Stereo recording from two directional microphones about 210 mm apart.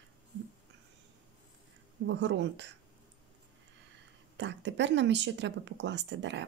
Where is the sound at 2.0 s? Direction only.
55° right (ahead or behind).